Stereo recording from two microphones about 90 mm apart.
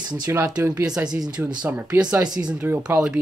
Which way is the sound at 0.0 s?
50° right (ahead or behind).